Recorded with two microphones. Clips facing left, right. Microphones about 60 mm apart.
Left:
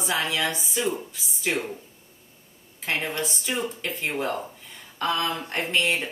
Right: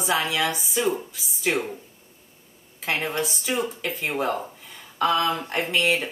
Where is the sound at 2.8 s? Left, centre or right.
Centre.